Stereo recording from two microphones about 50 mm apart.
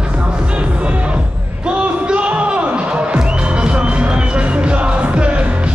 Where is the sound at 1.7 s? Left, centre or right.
Right.